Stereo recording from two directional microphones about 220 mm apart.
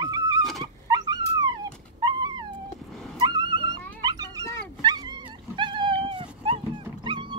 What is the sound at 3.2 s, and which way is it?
Music, 20° right (ahead or behind).